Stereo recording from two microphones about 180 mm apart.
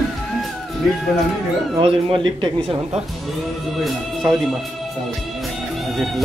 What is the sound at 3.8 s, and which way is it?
Speech, centre (ahead or behind).